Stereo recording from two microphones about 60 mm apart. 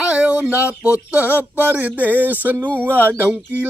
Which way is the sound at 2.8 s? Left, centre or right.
Right.